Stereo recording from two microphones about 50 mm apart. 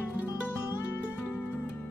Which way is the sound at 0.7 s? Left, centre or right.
Left.